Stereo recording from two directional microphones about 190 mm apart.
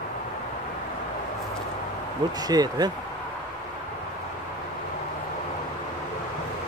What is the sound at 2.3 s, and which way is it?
Speech, 20° right (ahead or behind).